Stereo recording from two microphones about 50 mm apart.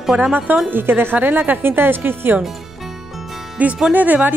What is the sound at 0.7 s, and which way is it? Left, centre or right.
Speech, right.